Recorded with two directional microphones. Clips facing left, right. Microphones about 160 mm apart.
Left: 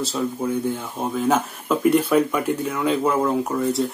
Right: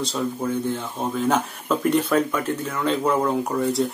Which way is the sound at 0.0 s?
5° left (ahead or behind).